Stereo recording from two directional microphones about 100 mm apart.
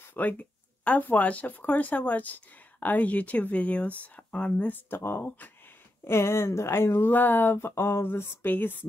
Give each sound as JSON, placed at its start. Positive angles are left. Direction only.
{"t": 0.1, "sound": "speech", "side_deg": 15}